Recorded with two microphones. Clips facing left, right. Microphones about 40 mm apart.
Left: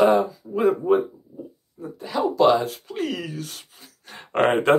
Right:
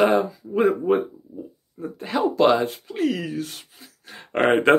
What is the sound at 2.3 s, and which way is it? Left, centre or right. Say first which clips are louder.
Speech: left 1 dB; centre.